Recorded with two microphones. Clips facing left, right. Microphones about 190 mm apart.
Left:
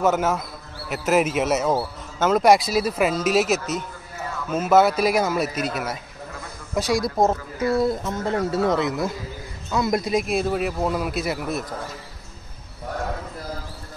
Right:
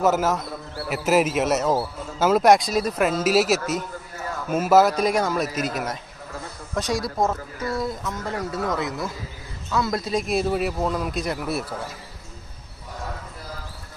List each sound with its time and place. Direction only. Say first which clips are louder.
0.0 s a man's voice: even; centre (ahead or behind)
7.2 s a man's voice: left 4 dB; 25° left (ahead or behind)
10.2 s a man's voice: even; centre (ahead or behind)